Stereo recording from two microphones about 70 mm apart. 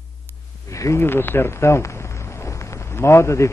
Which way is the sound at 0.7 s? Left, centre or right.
Left.